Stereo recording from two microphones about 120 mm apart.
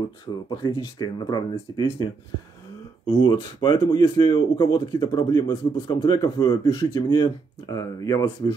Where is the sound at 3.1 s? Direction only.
35° left (ahead or behind).